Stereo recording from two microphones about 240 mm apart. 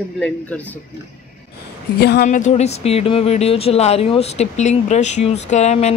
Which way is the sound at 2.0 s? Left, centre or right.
Left.